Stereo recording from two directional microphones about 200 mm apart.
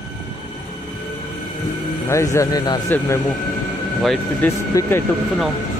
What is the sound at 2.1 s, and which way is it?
Speech, 15° left (ahead or behind).